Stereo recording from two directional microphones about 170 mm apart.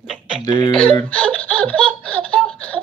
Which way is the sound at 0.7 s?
5° left (ahead or behind).